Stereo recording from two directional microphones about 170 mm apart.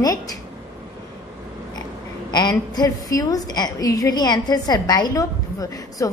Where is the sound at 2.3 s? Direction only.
25° left (ahead or behind).